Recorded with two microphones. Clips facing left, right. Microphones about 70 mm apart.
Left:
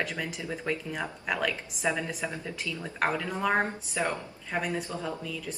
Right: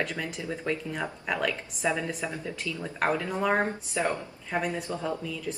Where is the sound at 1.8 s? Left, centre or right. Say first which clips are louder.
Right 1 dB; left.